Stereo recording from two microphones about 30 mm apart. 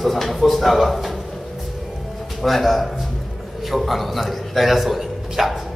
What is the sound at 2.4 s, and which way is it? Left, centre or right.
A man's voice, centre.